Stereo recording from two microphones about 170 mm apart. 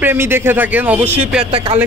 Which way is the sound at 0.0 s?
15° right (ahead or behind).